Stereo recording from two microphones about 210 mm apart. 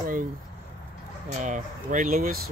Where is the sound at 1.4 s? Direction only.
35° right (ahead or behind).